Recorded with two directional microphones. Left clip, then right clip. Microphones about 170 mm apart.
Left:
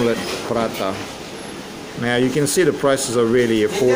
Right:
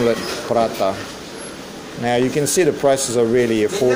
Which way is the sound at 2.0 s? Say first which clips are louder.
Right 1 dB; centre (ahead or behind).